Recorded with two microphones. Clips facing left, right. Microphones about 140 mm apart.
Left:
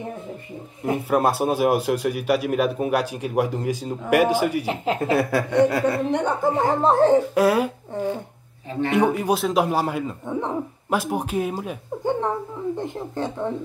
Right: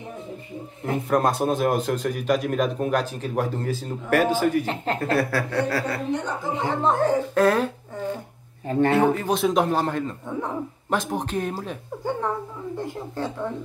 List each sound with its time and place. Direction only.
0.8 s a man's voice: 10° left (ahead or behind)
5.3 s speech: 20° left (ahead or behind)
6.1 s speech: 55° left (ahead or behind)
6.8 s speech: 30° left (ahead or behind)
7.3 s a man's voice: 10° left (ahead or behind)
8.9 s a man's voice: 15° left (ahead or behind)
12.0 s a sound: 20° left (ahead or behind)
12.7 s speech: 20° left (ahead or behind)